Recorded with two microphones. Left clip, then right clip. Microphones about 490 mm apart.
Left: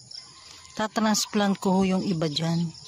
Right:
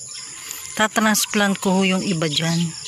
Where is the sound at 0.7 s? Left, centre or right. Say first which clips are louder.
Right 7 dB; left.